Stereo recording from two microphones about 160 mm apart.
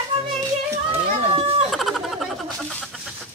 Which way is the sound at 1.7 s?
Centre (ahead or behind).